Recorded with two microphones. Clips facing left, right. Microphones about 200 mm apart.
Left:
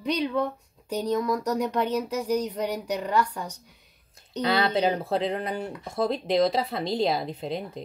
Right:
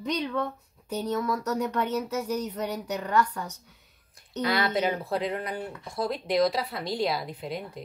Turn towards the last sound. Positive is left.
turn(degrees=25)  # may be behind; listen again after turning